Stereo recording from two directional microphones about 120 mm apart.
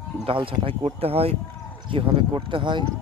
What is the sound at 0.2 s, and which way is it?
Speech, 45° right (ahead or behind).